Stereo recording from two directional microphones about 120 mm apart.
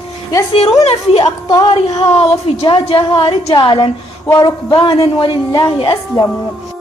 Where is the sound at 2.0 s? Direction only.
60° left (ahead or behind).